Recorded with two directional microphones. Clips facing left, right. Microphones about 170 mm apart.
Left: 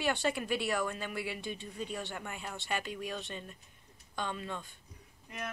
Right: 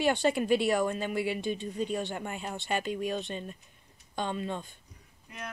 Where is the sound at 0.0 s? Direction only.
20° right (ahead or behind).